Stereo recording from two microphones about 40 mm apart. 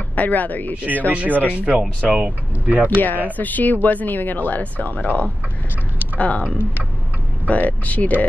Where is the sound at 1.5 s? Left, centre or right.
Right.